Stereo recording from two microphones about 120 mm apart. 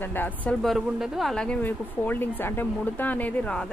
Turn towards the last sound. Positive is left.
turn(degrees=10)  # may be behind; listen again after turning